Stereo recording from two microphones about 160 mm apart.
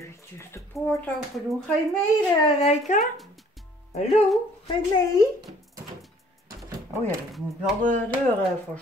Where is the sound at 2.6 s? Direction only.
45° left (ahead or behind).